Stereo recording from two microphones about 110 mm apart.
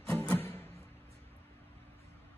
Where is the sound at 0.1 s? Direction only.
20° left (ahead or behind).